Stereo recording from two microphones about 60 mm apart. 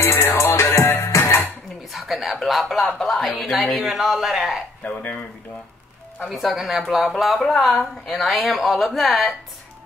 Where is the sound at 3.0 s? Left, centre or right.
Centre.